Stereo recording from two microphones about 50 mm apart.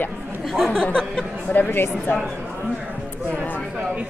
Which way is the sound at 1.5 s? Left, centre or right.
Left.